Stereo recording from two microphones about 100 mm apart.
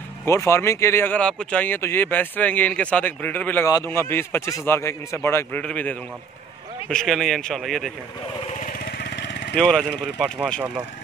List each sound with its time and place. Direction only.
0.2 s speech: 25° left (ahead or behind)
1.1 s a man's voice: 10° left (ahead or behind)
3.6 s speech: 30° left (ahead or behind)
5.6 s a man's voice: 15° left (ahead or behind)
9.6 s speech: 5° left (ahead or behind)